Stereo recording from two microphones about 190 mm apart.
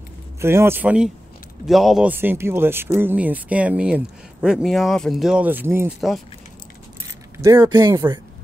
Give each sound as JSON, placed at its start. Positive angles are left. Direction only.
{"t": 0.4, "sound": "speech", "side_deg": -15}
{"t": 5.9, "sound": "speech", "side_deg": 0}
{"t": 7.3, "sound": "speech", "side_deg": -15}